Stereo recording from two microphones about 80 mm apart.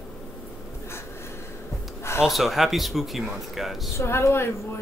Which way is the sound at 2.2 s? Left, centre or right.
Centre.